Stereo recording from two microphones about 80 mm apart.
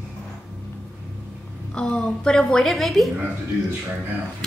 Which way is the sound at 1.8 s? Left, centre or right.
Centre.